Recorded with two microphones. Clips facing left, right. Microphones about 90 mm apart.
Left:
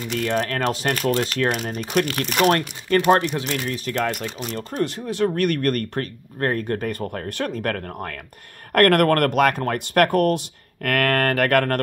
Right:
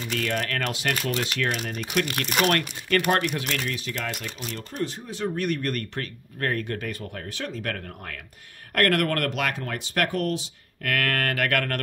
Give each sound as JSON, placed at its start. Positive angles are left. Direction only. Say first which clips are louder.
{"t": 0.2, "sound": "speech", "louder": "left 6 dB", "side_deg": 30}
{"t": 4.8, "sound": "speech", "louder": "left 7 dB", "side_deg": 70}
{"t": 6.4, "sound": "speech", "louder": "left 5 dB", "side_deg": 35}